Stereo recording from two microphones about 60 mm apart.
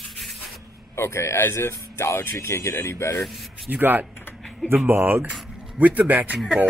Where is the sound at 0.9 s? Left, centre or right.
Left.